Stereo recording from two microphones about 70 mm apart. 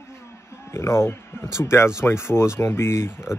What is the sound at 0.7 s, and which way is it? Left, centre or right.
Speech, left.